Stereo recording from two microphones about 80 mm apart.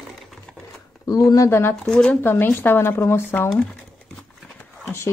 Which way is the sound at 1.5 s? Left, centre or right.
Left.